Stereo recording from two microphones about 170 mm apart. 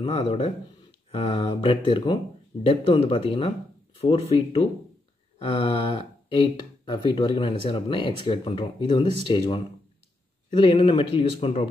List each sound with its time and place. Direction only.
0.0 s speech: 35° left (ahead or behind)